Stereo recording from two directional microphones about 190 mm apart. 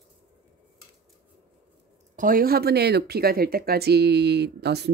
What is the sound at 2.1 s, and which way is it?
Speech, 45° right (ahead or behind).